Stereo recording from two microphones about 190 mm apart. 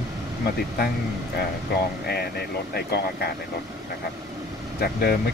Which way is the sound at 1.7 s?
55° left (ahead or behind).